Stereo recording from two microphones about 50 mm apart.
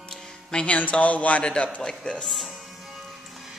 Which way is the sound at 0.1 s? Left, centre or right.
Centre.